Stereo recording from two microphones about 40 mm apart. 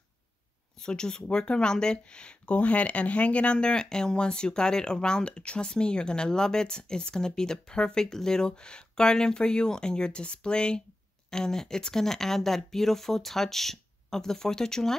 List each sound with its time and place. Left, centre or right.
0.7 s speech: centre